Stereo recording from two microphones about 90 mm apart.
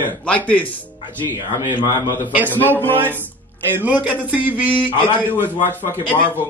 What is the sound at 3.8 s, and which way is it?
A man's voice, 15° right (ahead or behind).